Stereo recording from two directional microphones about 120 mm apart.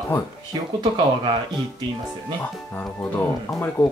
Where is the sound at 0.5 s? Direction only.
40° right (ahead or behind).